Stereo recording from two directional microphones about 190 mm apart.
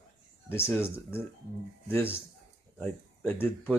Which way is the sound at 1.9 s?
10° left (ahead or behind).